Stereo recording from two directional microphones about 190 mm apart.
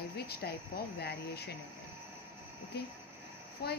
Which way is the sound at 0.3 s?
55° left (ahead or behind).